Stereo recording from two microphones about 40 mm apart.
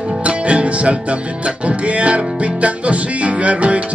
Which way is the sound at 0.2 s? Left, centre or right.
Right.